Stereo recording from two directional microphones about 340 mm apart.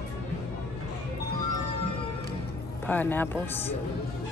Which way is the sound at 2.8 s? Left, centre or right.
Centre.